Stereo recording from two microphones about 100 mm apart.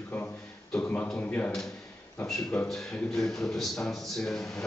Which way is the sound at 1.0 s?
15° left (ahead or behind).